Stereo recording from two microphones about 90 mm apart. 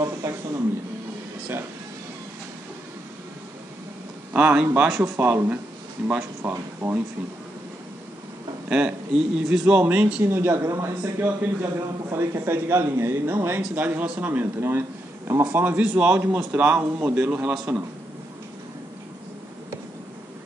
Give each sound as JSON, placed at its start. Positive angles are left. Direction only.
{"t": 0.2, "sound": "a sound", "side_deg": -35}
{"t": 4.3, "sound": "a man's voice", "side_deg": -15}
{"t": 5.1, "sound": "a man's voice", "side_deg": -25}
{"t": 6.5, "sound": "a man's voice", "side_deg": -25}
{"t": 8.6, "sound": "a man's voice", "side_deg": -10}
{"t": 10.2, "sound": "a man's voice", "side_deg": -25}
{"t": 16.2, "sound": "a man's voice", "side_deg": -25}